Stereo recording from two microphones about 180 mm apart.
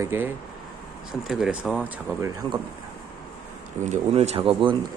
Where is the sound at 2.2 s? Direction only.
20° right (ahead or behind).